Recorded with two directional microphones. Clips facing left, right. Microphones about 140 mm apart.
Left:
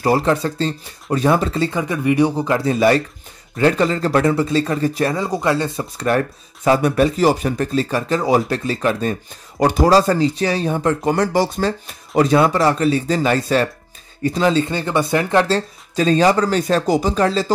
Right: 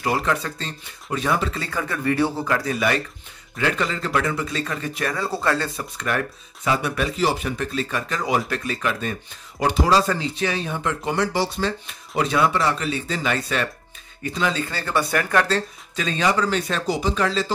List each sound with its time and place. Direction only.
0.0 s speech: 35° left (ahead or behind)
1.8 s speech: 15° left (ahead or behind); by 5.1 s 35° left (ahead or behind)
5.1 s speech: 15° left (ahead or behind)
5.9 s speech: 35° left (ahead or behind)
14.7 s speech: 20° left (ahead or behind); by 17.5 s 35° left (ahead or behind)